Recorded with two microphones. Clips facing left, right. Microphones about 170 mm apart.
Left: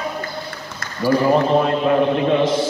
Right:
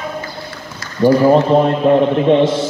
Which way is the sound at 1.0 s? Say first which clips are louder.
Right 5 dB; 25° right (ahead or behind).